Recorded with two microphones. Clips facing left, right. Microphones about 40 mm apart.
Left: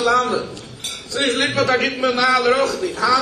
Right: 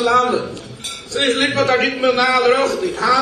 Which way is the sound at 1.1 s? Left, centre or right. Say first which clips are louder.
Right 2 dB; right.